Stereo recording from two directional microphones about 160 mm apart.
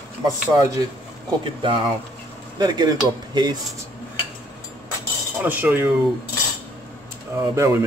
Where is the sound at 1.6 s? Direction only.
35° right (ahead or behind).